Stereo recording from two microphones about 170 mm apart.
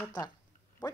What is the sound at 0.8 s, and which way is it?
Speech, 25° left (ahead or behind).